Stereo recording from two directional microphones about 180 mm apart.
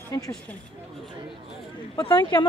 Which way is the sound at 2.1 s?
25° left (ahead or behind).